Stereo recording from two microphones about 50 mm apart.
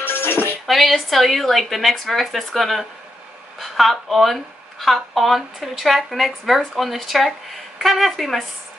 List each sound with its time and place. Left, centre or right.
0.0 s music: left
0.7 s speech: centre